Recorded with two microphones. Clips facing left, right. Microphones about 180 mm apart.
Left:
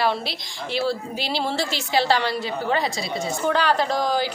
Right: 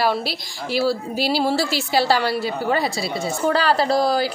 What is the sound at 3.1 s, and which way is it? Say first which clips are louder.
A woman's voice: right 2 dB; 35° right (ahead or behind).